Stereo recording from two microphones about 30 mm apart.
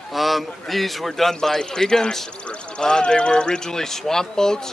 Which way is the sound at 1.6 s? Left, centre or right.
Left.